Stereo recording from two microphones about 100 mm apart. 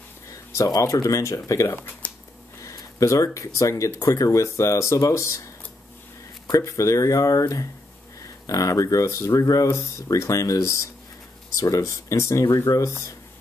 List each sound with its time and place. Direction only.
0.3 s speech: 35° left (ahead or behind)
6.4 s speech: 35° left (ahead or behind)